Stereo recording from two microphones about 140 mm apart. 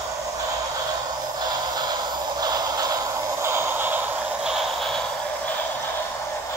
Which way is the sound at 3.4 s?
15° right (ahead or behind).